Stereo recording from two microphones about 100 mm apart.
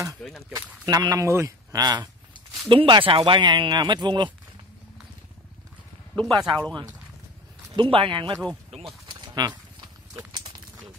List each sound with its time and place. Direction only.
0.6 s speech: 40° right (ahead or behind)
2.7 s speech: 60° right (ahead or behind)
6.3 s speech: 40° right (ahead or behind)
7.7 s speech: 60° right (ahead or behind)
8.6 s a sound: 90° right
9.0 s horse: 45° right (ahead or behind)